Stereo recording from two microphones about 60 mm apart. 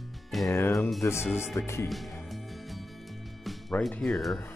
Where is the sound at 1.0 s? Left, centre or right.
Left.